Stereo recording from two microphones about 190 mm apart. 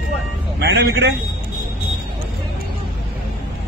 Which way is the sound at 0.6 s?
65° right (ahead or behind).